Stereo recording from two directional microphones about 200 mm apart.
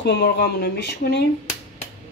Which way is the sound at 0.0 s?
55° left (ahead or behind).